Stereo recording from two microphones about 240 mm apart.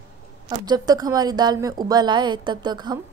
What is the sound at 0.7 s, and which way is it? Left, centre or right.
A woman's voice, centre.